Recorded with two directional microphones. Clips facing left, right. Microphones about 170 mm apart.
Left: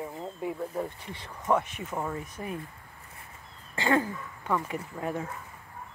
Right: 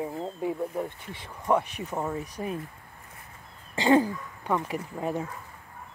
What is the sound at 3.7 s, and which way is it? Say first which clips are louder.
Speech: right 5 dB; 20° right (ahead or behind).